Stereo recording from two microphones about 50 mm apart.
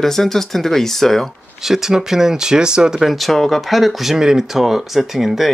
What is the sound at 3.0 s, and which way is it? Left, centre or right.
Speech, centre.